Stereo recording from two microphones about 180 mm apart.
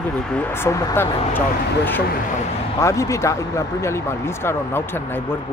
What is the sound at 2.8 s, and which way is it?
A man's voice, 15° left (ahead or behind).